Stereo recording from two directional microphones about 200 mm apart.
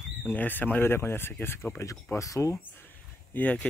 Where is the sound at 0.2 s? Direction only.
10° left (ahead or behind).